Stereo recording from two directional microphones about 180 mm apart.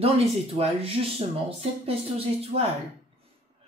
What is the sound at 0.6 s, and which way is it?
Speech, 30° right (ahead or behind).